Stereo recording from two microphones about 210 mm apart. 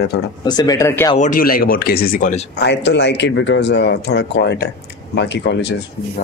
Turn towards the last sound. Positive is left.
turn(degrees=55)  # may be behind; listen again after turning